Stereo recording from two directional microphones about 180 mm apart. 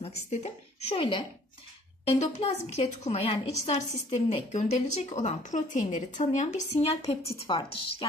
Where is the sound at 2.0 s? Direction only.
35° left (ahead or behind).